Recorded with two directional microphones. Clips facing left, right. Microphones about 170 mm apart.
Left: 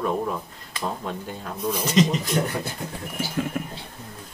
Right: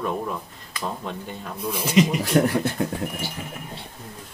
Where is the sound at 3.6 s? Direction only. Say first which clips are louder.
Left 9 dB; 60° left (ahead or behind).